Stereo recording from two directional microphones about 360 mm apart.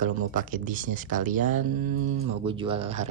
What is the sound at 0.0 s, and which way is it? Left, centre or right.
A man's voice, right.